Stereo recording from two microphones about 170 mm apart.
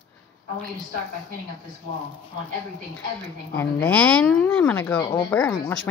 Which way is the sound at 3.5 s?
5° left (ahead or behind).